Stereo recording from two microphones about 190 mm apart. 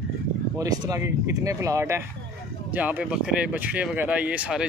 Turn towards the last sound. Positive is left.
turn(degrees=-5)  # may be behind; listen again after turning